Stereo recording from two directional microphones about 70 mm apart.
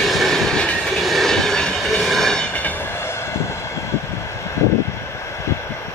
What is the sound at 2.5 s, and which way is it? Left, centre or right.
Train, left.